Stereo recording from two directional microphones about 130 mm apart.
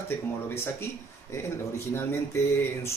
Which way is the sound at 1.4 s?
20° left (ahead or behind).